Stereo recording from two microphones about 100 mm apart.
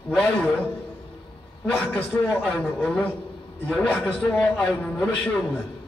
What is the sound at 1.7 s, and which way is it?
A man's voice, 20° left (ahead or behind).